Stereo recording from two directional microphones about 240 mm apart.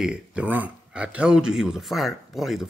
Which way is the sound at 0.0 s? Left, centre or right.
Centre.